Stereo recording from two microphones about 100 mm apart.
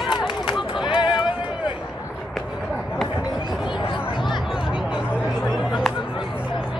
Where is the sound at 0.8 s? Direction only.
50° left (ahead or behind).